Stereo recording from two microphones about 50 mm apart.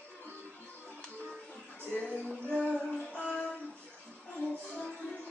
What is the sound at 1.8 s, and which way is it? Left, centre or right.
Music, left.